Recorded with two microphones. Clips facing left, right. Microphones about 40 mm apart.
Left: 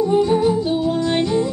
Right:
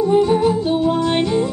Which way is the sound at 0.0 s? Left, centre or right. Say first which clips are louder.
Right 1 dB; centre.